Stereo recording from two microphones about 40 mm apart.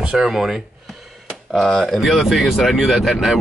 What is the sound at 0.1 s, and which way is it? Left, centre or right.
Speech, centre.